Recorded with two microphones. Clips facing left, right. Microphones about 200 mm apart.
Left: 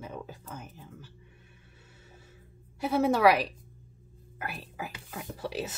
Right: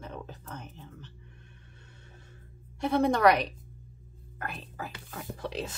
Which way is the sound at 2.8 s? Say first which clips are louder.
Even; 5° left (ahead or behind).